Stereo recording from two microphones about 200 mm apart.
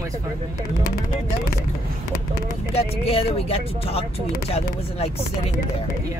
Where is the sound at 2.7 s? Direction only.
30° left (ahead or behind).